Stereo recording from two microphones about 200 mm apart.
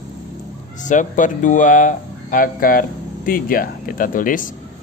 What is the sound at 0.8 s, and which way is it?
Speech, 40° left (ahead or behind).